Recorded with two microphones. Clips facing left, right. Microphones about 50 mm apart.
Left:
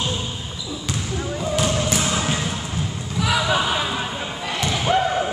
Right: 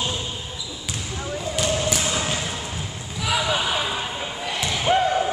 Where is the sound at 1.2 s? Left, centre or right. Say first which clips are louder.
Left 2 dB; centre.